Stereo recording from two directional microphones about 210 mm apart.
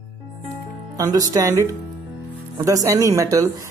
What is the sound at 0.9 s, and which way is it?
Speech, 15° right (ahead or behind).